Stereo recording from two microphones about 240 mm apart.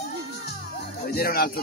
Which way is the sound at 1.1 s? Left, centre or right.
Left.